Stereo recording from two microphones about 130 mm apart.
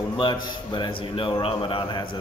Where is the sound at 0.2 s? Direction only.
35° left (ahead or behind).